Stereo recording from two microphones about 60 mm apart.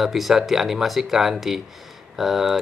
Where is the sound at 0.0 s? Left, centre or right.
Centre.